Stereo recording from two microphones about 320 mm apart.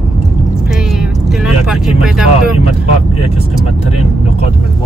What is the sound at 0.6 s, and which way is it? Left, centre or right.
Vehicle, centre.